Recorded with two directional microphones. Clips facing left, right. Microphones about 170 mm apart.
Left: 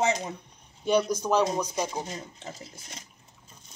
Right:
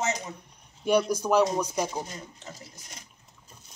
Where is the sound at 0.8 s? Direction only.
10° right (ahead or behind).